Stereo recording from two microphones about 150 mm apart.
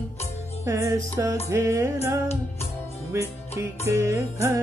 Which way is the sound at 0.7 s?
20° right (ahead or behind).